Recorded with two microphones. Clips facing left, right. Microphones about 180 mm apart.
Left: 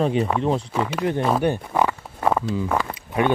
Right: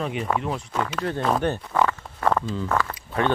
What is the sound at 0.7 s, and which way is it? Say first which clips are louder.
Speech: left 4 dB; 10° left (ahead or behind).